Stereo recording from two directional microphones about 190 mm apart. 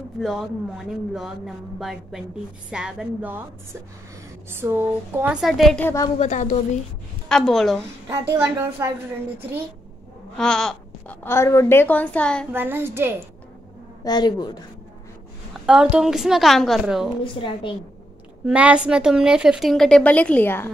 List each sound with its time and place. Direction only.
0.2 s a woman's voice: centre (ahead or behind)
4.5 s a woman's voice: 10° right (ahead or behind); by 6.0 s 10° left (ahead or behind)
6.1 s a woman's voice: 35° left (ahead or behind)
7.2 s a woman's voice: centre (ahead or behind)
8.1 s a woman's voice: 15° right (ahead or behind)
10.3 s a sound: 5° left (ahead or behind)
11.2 s a woman's voice: 15° left (ahead or behind)
12.5 s a woman's voice: 10° right (ahead or behind)
14.0 s speech: 20° left (ahead or behind)
15.6 s a woman's voice: 5° right (ahead or behind)
17.2 s speech: 25° left (ahead or behind)
18.5 s a woman's voice: 5° right (ahead or behind); by 20.7 s 10° left (ahead or behind)